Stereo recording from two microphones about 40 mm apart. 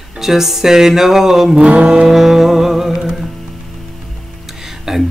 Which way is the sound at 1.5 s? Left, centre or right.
Right.